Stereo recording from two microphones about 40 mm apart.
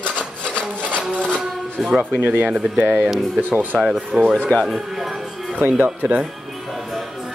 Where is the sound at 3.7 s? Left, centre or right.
Left.